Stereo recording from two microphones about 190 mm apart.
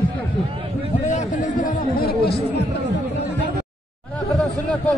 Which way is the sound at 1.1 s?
40° left (ahead or behind).